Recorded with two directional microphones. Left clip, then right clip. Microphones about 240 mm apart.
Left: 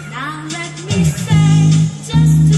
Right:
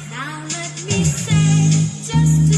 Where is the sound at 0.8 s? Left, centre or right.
Right.